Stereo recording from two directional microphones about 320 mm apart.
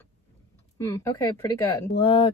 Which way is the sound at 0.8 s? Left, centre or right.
Centre.